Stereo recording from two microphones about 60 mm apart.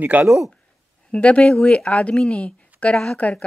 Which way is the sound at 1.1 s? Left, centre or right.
Centre.